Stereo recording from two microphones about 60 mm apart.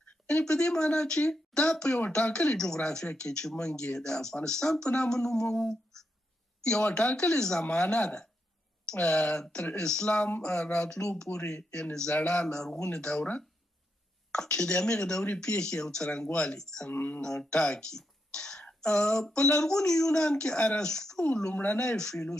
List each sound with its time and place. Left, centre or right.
0.0 s speech: centre
16.9 s speech: left
17.2 s speech: centre